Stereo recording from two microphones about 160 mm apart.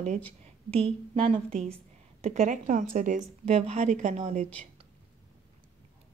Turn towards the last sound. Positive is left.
turn(degrees=-45)  # may be behind; listen again after turning